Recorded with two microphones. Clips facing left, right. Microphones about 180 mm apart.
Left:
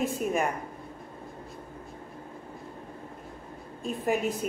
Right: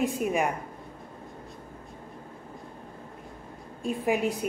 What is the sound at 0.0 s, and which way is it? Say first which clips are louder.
Speech: right 2 dB; 15° right (ahead or behind).